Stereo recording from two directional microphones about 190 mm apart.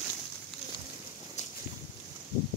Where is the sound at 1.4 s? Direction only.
35° left (ahead or behind).